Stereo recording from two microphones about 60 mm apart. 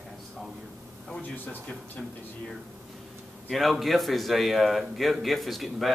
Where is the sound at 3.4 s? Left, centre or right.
Centre.